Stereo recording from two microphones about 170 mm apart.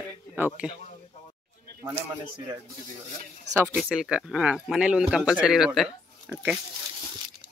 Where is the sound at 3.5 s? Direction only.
15° right (ahead or behind).